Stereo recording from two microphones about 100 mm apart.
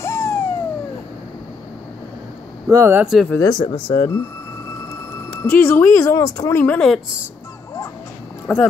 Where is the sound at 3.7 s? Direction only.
55° left (ahead or behind).